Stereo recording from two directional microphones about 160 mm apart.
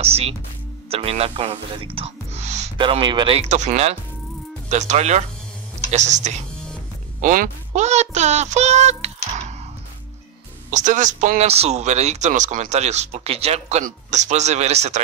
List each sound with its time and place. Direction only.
0.0 s speech: 40° right (ahead or behind)
2.8 s speech: 30° right (ahead or behind)
10.7 s speech: 50° right (ahead or behind)